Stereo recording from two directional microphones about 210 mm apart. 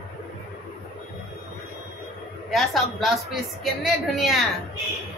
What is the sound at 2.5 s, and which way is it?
Speech, centre (ahead or behind).